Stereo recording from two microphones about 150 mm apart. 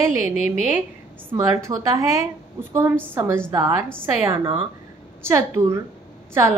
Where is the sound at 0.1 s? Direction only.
15° right (ahead or behind).